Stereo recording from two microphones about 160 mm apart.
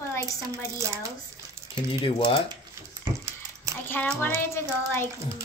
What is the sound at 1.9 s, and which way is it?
Speech, 30° left (ahead or behind).